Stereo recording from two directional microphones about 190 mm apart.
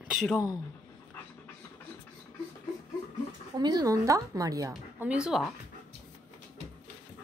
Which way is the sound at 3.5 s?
20° right (ahead or behind).